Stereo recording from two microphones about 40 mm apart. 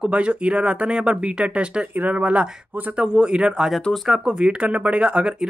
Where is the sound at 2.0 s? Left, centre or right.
Right.